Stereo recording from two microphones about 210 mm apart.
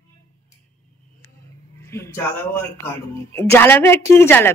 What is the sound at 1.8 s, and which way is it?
A woman's voice, 15° left (ahead or behind).